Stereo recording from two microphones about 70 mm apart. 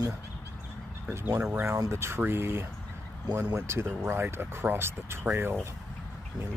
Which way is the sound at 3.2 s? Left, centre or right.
Right.